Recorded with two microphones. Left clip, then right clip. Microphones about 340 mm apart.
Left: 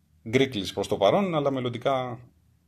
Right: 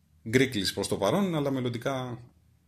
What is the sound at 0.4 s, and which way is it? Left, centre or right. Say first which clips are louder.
Speech: left 1 dB; left.